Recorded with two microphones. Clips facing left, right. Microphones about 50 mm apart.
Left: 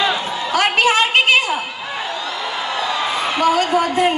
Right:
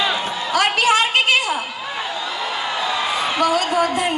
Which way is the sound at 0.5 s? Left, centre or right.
Left.